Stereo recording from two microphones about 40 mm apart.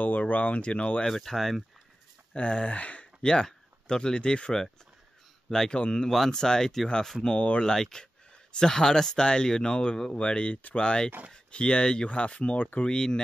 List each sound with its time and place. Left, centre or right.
0.0 s speech: left
1.0 s speech: centre
2.3 s speech: left
3.3 s speech: centre
6.0 s speech: centre
7.3 s speech: left
7.6 s speech: centre; by 10.8 s left
10.8 s speech: left
12.8 s speech: left